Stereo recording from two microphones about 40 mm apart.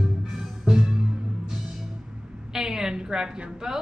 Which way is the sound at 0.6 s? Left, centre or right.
Centre.